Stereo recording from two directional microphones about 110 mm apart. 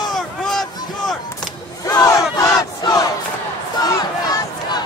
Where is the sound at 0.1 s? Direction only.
5° left (ahead or behind).